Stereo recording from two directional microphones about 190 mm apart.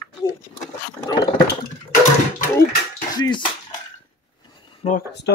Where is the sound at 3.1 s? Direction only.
20° left (ahead or behind).